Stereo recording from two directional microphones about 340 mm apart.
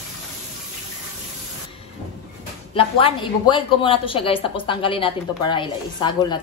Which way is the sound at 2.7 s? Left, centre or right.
Centre.